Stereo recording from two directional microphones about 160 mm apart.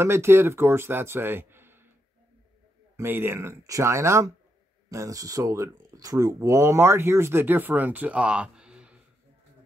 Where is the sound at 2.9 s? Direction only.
15° right (ahead or behind).